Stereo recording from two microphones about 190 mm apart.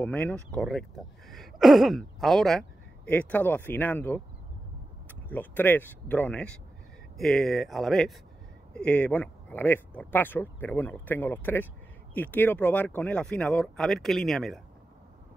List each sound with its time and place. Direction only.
0.0 s speech: 10° left (ahead or behind)